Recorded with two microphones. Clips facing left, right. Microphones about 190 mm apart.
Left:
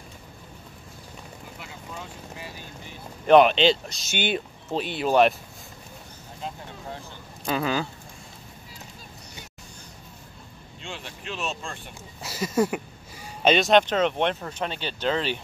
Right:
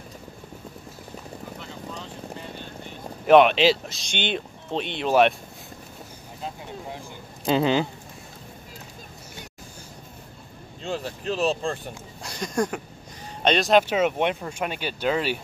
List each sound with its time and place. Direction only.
1.6 s vehicle: 10° left (ahead or behind)
3.3 s speech: centre (ahead or behind)
7.4 s speech: 25° right (ahead or behind)
10.8 s speech: 40° right (ahead or behind)
12.2 s speech: 5° left (ahead or behind)